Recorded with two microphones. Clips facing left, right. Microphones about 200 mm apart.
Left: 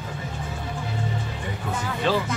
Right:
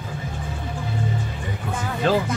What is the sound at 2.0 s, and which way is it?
Music, 45° right (ahead or behind).